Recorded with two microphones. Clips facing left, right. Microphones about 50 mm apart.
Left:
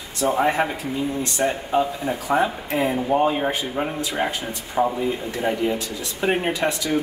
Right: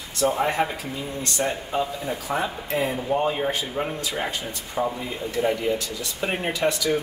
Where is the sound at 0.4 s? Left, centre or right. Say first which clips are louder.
Left 3 dB; centre.